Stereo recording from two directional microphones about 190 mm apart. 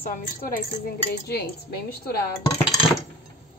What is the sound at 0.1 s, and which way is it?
A woman's voice, 50° left (ahead or behind).